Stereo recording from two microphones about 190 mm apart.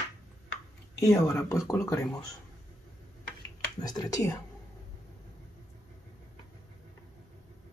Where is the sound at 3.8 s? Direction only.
20° left (ahead or behind).